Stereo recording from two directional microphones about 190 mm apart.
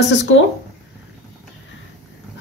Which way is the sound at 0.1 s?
70° left (ahead or behind).